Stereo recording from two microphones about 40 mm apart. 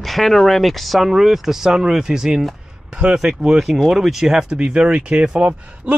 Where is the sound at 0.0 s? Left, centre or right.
Centre.